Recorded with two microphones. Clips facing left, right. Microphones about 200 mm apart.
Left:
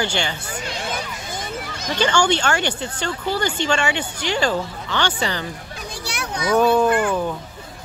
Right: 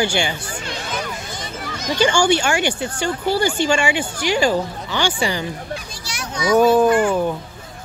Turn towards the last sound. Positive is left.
turn(degrees=-10)  # may be behind; listen again after turning